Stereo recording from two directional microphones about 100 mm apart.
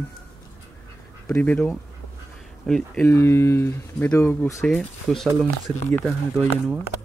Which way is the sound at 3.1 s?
30° left (ahead or behind).